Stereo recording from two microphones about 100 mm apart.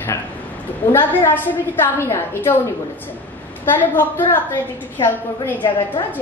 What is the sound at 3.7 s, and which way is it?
A woman's voice, 20° left (ahead or behind).